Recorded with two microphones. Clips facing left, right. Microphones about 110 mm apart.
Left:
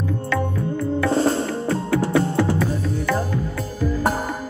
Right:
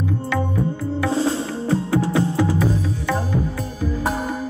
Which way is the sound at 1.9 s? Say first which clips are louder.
Left 3 dB; 15° right (ahead or behind).